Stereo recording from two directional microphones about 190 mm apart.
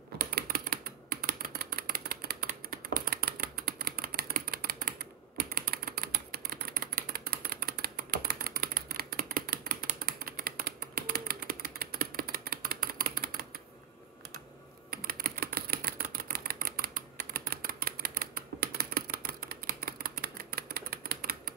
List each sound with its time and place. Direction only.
0.2 s typing: 55° right (ahead or behind)
7.1 s a sound: 55° right (ahead or behind)
14.9 s typewriter: 55° right (ahead or behind)